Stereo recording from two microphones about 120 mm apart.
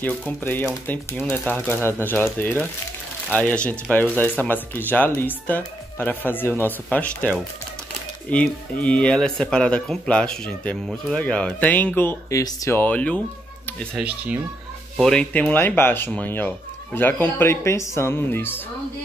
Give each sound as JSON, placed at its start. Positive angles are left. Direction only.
{"t": 0.4, "sound": "speech", "side_deg": 15}
{"t": 8.3, "sound": "speech", "side_deg": 10}
{"t": 12.8, "sound": "speech", "side_deg": 10}
{"t": 13.9, "sound": "speech", "side_deg": -10}
{"t": 15.0, "sound": "speech", "side_deg": 5}